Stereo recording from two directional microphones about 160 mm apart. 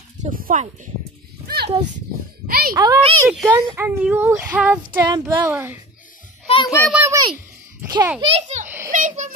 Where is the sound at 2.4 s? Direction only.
70° right (ahead or behind).